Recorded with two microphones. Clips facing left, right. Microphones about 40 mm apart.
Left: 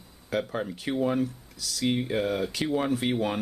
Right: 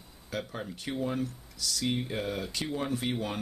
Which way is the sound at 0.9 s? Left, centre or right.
Left.